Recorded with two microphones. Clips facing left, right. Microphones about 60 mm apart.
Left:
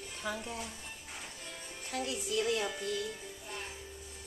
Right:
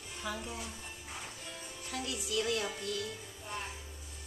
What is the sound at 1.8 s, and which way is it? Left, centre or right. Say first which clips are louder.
Speech: left 3 dB; left.